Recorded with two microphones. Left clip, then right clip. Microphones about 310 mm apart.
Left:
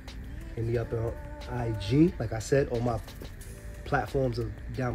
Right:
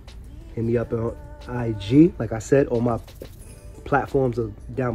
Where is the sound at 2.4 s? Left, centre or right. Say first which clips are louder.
Right 7 dB; centre.